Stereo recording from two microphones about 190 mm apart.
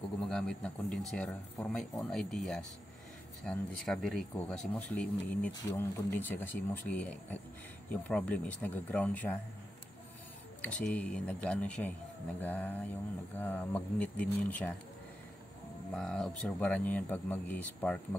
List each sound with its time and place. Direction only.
0.2 s speech: 5° left (ahead or behind)
10.6 s speech: 10° left (ahead or behind)
15.9 s speech: 5° left (ahead or behind)